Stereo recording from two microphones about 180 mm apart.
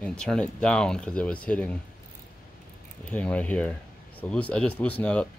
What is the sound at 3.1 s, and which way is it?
Speech, 10° left (ahead or behind).